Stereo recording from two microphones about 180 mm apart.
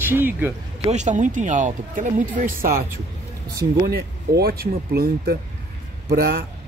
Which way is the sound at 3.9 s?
60° right (ahead or behind).